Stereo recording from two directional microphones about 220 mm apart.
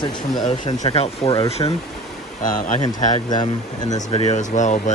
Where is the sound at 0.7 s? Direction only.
30° left (ahead or behind).